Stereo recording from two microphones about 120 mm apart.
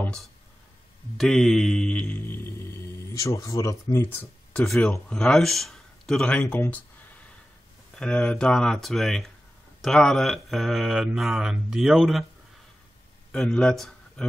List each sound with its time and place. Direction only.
1.1 s mantra: 5° left (ahead or behind)
4.6 s speech: 5° left (ahead or behind)
7.9 s speech: 10° left (ahead or behind)
13.3 s speech: 5° left (ahead or behind)